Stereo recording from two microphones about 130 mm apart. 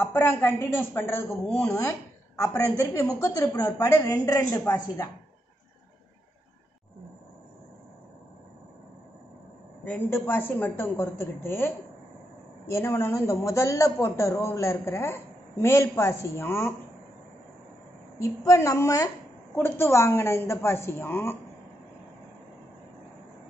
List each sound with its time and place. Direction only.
0.1 s a woman's voice: 15° left (ahead or behind)
9.8 s a woman's voice: 15° left (ahead or behind)
18.2 s a woman's voice: 25° left (ahead or behind)